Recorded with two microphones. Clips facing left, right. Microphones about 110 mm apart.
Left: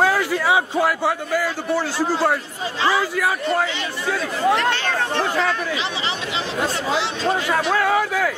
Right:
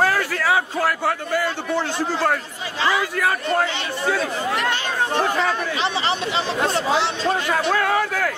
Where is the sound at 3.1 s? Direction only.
5° left (ahead or behind).